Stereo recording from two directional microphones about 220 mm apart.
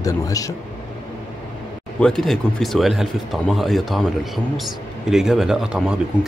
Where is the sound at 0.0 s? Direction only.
15° left (ahead or behind).